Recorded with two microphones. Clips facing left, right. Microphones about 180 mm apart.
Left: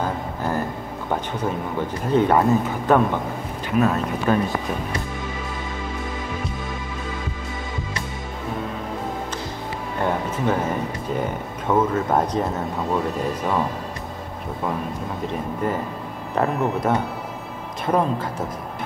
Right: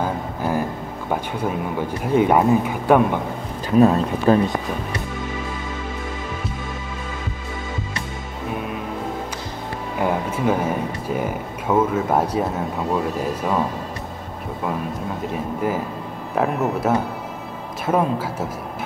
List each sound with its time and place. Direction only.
0.0 s a sound: 10° right (ahead or behind)
1.1 s speech: 10° right (ahead or behind)
3.7 s speech: 30° right (ahead or behind)
9.9 s speech: 10° right (ahead or behind)
15.3 s speech: 5° right (ahead or behind)